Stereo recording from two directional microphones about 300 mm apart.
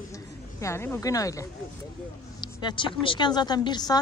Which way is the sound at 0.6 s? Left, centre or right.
Centre.